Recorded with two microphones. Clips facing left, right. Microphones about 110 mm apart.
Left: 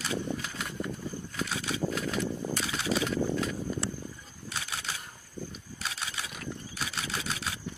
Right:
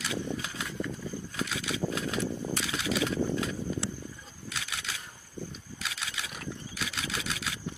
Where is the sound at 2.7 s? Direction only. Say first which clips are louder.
Left 1 dB; 35° left (ahead or behind).